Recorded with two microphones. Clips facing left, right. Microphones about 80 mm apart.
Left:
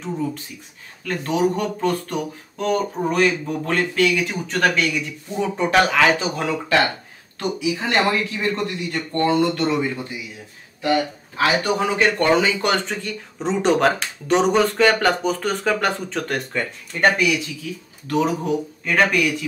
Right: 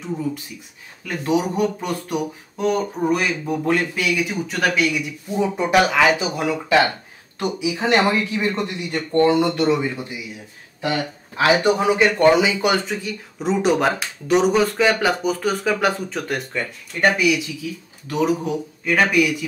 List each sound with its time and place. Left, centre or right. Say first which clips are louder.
1.0 s speech: left 1 dB; centre
11.3 s speech: right 3 dB; centre